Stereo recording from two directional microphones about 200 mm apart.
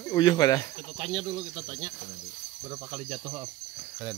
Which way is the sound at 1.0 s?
25° right (ahead or behind).